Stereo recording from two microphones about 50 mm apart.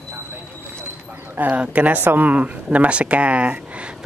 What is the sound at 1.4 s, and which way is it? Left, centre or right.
Speech, right.